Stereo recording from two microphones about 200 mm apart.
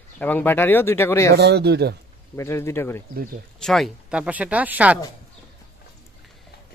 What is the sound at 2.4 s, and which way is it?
Speech, 15° left (ahead or behind).